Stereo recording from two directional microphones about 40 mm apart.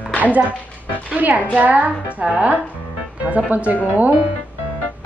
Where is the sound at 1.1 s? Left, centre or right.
Right.